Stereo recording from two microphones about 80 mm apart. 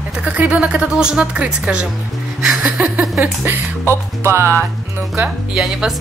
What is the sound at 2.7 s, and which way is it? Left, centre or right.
Speech, centre.